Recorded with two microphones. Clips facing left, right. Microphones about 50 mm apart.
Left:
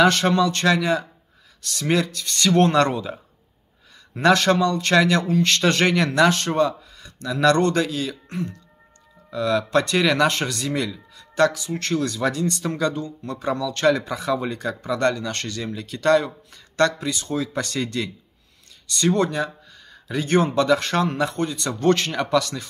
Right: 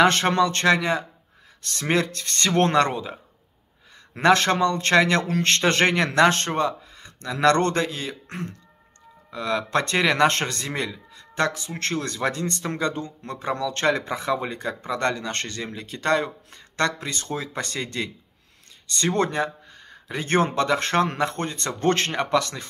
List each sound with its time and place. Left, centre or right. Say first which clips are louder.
0.0 s speech: left 1 dB; right
4.1 s speech: left 1 dB; right
7.8 s a man's voice: left 3 dB; right
8.3 s speech: left 4 dB; right
9.3 s a man's voice: left 4 dB; right